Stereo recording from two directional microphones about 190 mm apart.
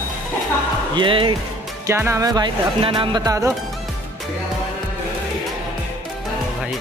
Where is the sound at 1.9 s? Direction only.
15° right (ahead or behind).